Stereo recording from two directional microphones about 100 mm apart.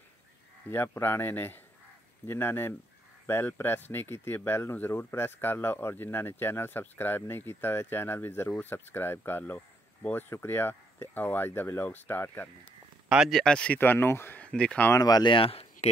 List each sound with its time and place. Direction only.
0.7 s speech: 25° left (ahead or behind)
13.1 s speech: 5° right (ahead or behind)
13.4 s speech: 10° left (ahead or behind)
14.9 s speech: 40° left (ahead or behind)
15.3 s speech: 75° left (ahead or behind)